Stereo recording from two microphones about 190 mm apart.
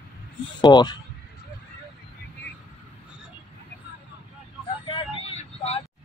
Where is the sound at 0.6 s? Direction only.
20° left (ahead or behind).